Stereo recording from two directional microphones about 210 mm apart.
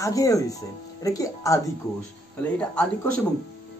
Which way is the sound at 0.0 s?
15° left (ahead or behind).